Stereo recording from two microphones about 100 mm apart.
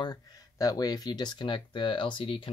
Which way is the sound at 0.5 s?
40° left (ahead or behind).